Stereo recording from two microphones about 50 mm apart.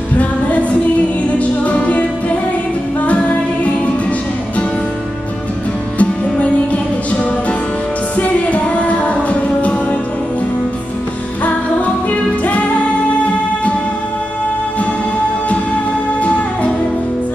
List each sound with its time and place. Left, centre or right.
0.2 s music: left
5.9 s music: left
8.2 s music: left
11.4 s music: left